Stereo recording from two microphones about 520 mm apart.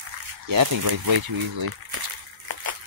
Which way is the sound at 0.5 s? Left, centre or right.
Right.